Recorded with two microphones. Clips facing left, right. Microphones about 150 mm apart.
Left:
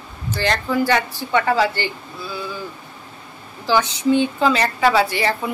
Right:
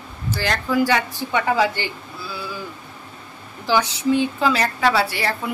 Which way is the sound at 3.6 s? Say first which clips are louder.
Left 2 dB; 10° right (ahead or behind).